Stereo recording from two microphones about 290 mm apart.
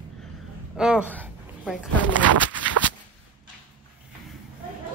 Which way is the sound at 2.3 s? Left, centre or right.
Right.